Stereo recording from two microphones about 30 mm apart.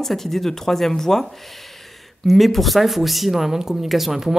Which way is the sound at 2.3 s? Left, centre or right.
Centre.